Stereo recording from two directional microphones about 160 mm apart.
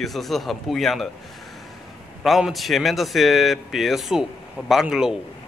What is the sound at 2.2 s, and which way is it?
Speech, centre (ahead or behind).